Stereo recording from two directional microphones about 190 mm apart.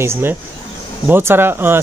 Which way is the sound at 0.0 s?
10° right (ahead or behind).